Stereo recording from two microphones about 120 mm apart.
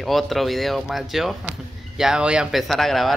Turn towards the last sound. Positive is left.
turn(degrees=0)  # may be behind; listen again after turning